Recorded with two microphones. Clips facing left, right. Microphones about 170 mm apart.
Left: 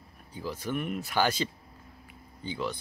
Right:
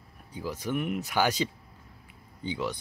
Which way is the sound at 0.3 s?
15° right (ahead or behind).